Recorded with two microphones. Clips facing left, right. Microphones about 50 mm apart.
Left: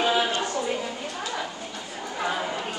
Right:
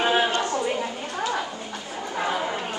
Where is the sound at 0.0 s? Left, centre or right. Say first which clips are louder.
Right 2 dB; right.